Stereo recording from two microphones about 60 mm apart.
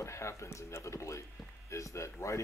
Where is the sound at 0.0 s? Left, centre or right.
Left.